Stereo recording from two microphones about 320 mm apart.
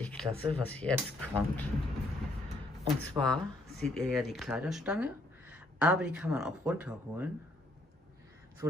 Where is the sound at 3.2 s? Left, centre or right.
Centre.